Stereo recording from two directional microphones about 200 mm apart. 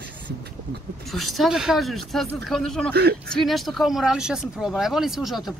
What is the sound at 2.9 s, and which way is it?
Speech, 55° right (ahead or behind).